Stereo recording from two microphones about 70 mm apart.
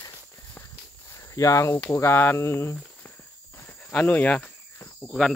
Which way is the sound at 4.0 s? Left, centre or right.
Left.